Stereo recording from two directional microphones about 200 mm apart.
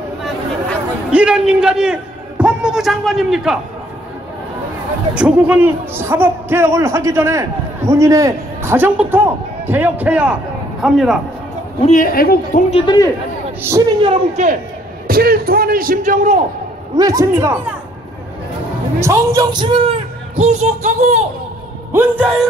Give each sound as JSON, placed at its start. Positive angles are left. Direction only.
{"t": 1.1, "sound": "a man's voice", "side_deg": -5}
{"t": 5.1, "sound": "a man's voice", "side_deg": -5}
{"t": 11.8, "sound": "a man's voice", "side_deg": 40}
{"t": 12.7, "sound": "a man's voice", "side_deg": 20}
{"t": 13.6, "sound": "speech", "side_deg": -15}
{"t": 14.0, "sound": "speech", "side_deg": -35}
{"t": 15.0, "sound": "speech", "side_deg": -50}
{"t": 16.9, "sound": "a man's voice", "side_deg": -20}
{"t": 18.9, "sound": "a man's voice", "side_deg": -15}
{"t": 20.3, "sound": "speech", "side_deg": -35}
{"t": 21.9, "sound": "a man's voice", "side_deg": -5}